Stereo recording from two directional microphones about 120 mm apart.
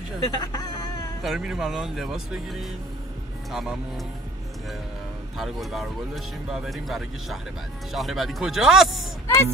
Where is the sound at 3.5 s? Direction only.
5° right (ahead or behind).